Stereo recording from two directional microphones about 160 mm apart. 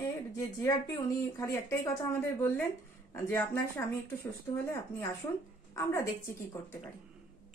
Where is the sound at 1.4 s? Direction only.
20° left (ahead or behind).